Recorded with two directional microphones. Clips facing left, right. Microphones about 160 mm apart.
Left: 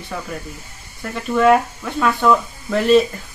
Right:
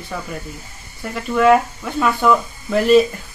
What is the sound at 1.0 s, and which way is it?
Speech, 5° right (ahead or behind).